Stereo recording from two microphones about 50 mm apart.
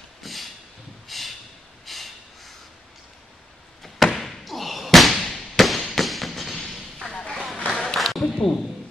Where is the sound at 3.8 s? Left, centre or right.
Centre.